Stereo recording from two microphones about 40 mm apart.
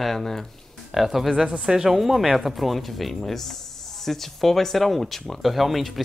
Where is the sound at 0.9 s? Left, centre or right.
Centre.